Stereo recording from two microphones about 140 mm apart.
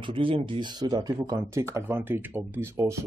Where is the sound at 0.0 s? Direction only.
40° right (ahead or behind).